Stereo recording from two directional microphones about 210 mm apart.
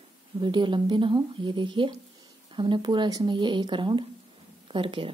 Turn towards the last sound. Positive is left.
turn(degrees=-25)  # may be behind; listen again after turning